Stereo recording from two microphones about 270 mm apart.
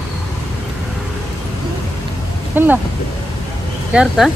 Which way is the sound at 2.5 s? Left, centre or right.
Centre.